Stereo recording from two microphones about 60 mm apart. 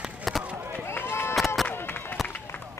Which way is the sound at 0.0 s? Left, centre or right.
Centre.